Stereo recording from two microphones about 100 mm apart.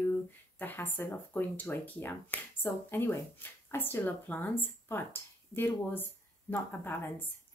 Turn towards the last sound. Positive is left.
turn(degrees=20)  # may be behind; listen again after turning